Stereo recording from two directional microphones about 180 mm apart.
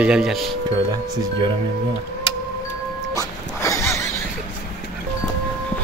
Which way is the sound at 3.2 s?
15° left (ahead or behind).